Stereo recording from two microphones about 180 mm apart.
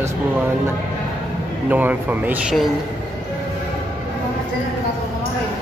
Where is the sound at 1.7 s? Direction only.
10° right (ahead or behind).